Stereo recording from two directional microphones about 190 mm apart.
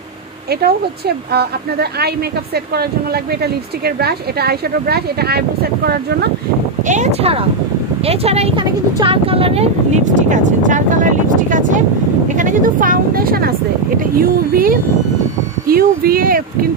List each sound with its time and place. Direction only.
0.5 s a woman's voice: 55° right (ahead or behind)
6.9 s speech: 35° right (ahead or behind)